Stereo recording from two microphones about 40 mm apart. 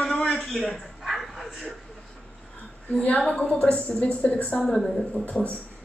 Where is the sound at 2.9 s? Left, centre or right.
Left.